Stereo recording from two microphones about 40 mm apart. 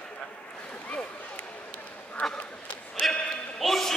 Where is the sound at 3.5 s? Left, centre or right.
Centre.